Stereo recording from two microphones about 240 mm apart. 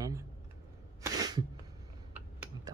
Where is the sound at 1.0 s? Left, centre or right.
Centre.